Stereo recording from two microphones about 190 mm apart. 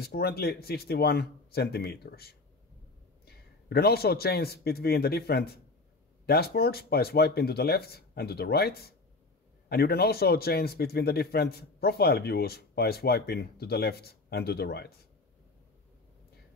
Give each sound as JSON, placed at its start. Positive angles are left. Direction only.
{"t": 0.0, "sound": "a man's voice", "side_deg": 55}